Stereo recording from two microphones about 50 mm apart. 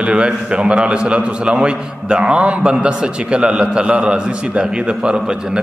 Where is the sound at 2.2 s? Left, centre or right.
Right.